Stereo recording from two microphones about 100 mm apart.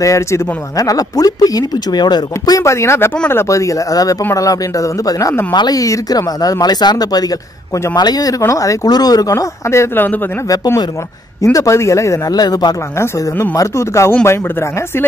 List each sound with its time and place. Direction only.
0.0 s speech: 35° left (ahead or behind)
11.5 s speech: 30° left (ahead or behind)
13.0 s speech: 30° left (ahead or behind)